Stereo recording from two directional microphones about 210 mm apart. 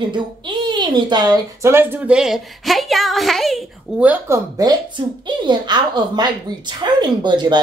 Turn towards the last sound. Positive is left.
turn(degrees=-20)  # may be behind; listen again after turning